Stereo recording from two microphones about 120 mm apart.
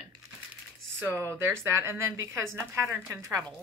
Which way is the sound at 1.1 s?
20° right (ahead or behind).